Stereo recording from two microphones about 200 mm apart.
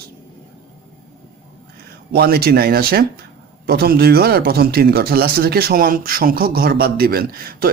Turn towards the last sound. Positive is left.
turn(degrees=-50)  # may be behind; listen again after turning